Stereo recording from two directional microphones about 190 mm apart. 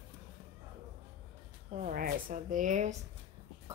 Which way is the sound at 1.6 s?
40° right (ahead or behind).